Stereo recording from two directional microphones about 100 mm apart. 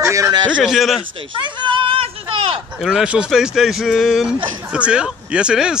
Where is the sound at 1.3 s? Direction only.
55° right (ahead or behind).